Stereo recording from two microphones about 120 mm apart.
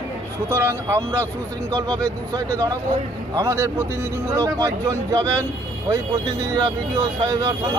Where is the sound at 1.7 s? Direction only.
35° right (ahead or behind).